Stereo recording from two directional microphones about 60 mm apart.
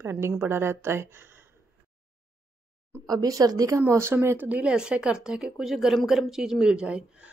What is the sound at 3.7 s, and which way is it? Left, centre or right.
Speech, right.